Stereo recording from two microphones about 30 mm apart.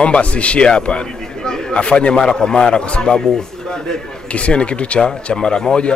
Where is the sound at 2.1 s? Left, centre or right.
Left.